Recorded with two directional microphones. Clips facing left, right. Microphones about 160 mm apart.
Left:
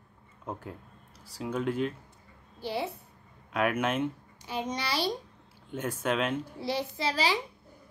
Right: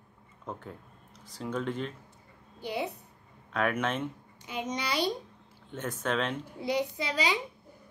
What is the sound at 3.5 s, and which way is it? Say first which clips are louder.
Speech: left 1 dB; 10° left (ahead or behind).